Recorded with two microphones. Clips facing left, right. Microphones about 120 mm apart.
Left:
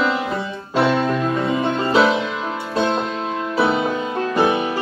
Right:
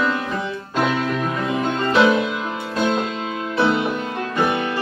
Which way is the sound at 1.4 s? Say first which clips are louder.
Left 2 dB; 25° left (ahead or behind).